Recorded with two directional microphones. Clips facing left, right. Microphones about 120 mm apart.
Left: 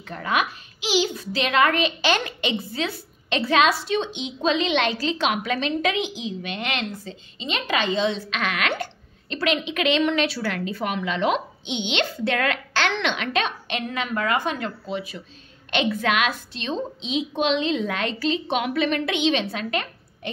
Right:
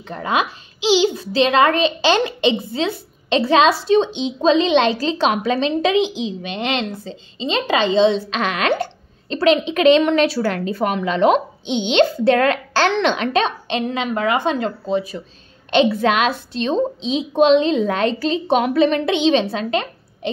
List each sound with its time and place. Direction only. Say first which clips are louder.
0.0 s a child's voice: right 4 dB; 25° right (ahead or behind)